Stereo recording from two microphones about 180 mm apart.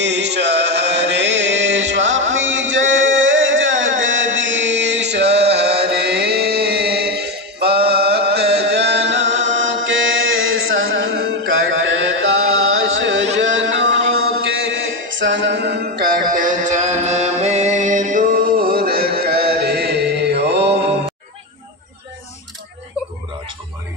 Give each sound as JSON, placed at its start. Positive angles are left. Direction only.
{"t": 0.0, "sound": "chant", "side_deg": -75}
{"t": 3.8, "sound": "music", "side_deg": -90}
{"t": 13.4, "sound": "a sound", "side_deg": -90}
{"t": 14.4, "sound": "mantra", "side_deg": -90}
{"t": 16.3, "sound": "music", "side_deg": -45}
{"t": 19.1, "sound": "chant", "side_deg": -60}